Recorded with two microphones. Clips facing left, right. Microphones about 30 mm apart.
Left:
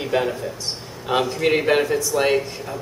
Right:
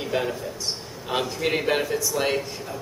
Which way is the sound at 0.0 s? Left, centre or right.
Centre.